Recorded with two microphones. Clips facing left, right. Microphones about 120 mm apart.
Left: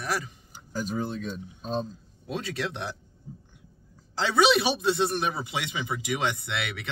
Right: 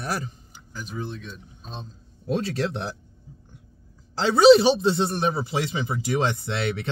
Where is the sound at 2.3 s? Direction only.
40° right (ahead or behind).